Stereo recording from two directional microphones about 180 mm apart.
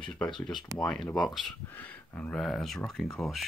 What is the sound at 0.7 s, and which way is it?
Speech, 5° left (ahead or behind).